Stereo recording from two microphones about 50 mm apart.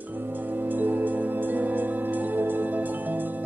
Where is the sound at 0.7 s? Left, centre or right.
Right.